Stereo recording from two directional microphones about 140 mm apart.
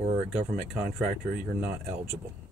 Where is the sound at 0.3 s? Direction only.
Centre (ahead or behind).